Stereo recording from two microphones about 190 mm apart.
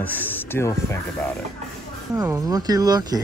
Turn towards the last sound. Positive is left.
turn(degrees=-20)  # may be behind; listen again after turning